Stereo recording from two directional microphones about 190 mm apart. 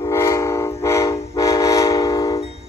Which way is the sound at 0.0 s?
15° left (ahead or behind).